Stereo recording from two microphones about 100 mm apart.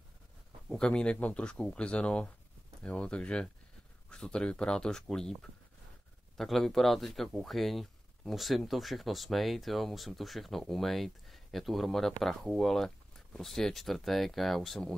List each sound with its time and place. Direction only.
0.7 s speech: 10° left (ahead or behind)